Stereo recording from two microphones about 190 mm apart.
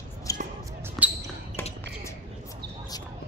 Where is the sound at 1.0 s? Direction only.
Centre (ahead or behind).